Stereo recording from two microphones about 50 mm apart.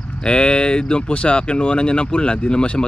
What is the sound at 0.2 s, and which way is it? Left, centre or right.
Speech, centre.